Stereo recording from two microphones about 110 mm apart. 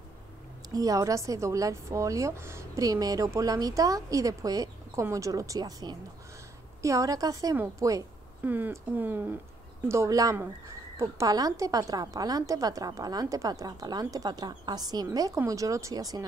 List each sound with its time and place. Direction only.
0.7 s a woman's voice: 30° right (ahead or behind)
8.5 s speech: 15° right (ahead or behind)
9.8 s a woman's voice: 30° right (ahead or behind)